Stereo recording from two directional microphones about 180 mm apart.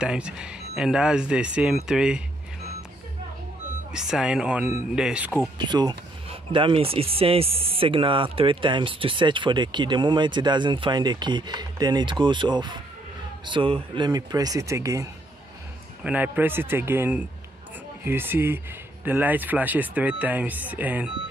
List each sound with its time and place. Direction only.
0.0 s speech: 5° right (ahead or behind)
3.9 s speech: 5° right (ahead or behind)
5.6 s speech: 25° right (ahead or behind)